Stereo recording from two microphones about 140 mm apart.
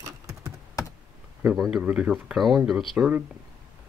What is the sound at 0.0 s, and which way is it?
Typing, 20° right (ahead or behind).